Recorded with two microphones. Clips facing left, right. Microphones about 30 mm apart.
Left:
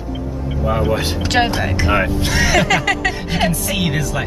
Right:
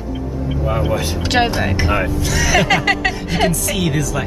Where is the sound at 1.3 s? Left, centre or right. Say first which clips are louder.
Right 1 dB; centre.